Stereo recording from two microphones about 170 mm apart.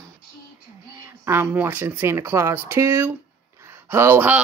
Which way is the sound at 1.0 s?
15° right (ahead or behind).